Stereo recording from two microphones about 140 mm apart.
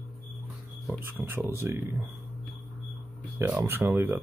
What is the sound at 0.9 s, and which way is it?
Speech, 15° right (ahead or behind).